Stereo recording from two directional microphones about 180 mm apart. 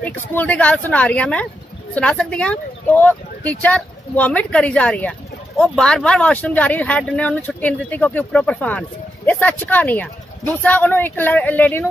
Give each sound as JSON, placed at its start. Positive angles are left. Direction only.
{"t": 0.3, "sound": "speech", "side_deg": 10}